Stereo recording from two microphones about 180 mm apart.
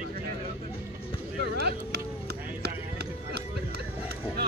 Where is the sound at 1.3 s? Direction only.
60° right (ahead or behind).